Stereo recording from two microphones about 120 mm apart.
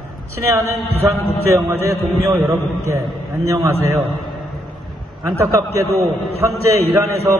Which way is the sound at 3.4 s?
25° right (ahead or behind).